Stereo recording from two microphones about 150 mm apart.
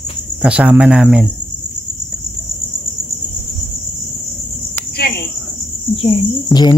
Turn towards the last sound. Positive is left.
turn(degrees=0)  # may be behind; listen again after turning